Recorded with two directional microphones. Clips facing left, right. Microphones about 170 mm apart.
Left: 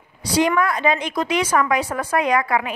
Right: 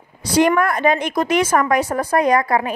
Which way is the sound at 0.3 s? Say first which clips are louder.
Right 3 dB; 50° right (ahead or behind).